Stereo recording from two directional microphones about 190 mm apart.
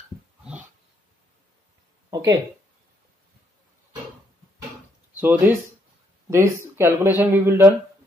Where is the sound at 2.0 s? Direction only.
20° right (ahead or behind).